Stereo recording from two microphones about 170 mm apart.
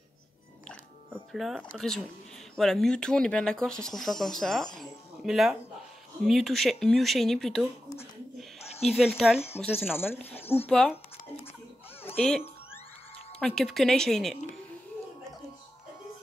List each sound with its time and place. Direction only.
0.7 s speech: centre (ahead or behind)
4.7 s a sound: centre (ahead or behind)
6.2 s speech: centre (ahead or behind)
8.5 s owl: 40° left (ahead or behind)
8.8 s speech: centre (ahead or behind)
9.9 s speech: 10° left (ahead or behind)
12.0 s music: 10° left (ahead or behind)
13.4 s speech: 5° left (ahead or behind)